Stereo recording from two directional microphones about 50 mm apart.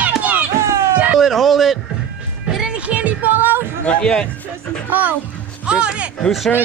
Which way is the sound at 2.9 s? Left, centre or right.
Right.